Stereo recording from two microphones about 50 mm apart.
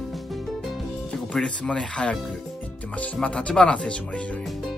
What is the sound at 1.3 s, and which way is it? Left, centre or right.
Speech, left.